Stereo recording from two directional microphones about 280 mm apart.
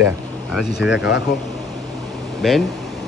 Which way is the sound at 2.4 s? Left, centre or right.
Centre.